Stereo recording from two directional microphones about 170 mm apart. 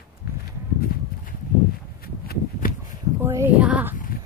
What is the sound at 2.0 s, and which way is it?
Walk, 60° left (ahead or behind).